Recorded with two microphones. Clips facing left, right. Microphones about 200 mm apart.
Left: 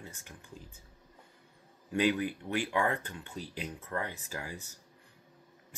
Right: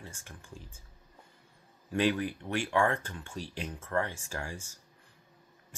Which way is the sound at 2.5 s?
15° left (ahead or behind).